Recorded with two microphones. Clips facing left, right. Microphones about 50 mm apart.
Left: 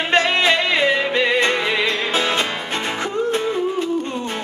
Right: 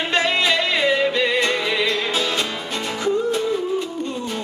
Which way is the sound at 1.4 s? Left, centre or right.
Left.